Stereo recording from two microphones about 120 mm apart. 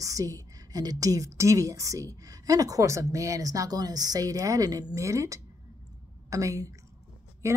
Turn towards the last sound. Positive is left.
turn(degrees=-25)  # may be behind; listen again after turning